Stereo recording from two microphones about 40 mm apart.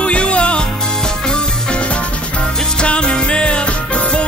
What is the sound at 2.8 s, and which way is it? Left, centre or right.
Music, left.